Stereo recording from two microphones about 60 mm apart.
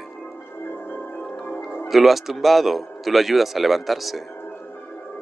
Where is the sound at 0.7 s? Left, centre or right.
Left.